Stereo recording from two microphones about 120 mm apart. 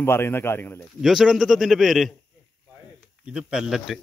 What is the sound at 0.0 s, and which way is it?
Speech, 20° left (ahead or behind).